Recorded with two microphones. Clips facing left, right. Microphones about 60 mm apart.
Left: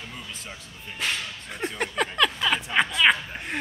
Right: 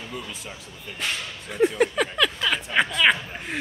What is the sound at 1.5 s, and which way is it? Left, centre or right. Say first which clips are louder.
Speech: right 10 dB; centre.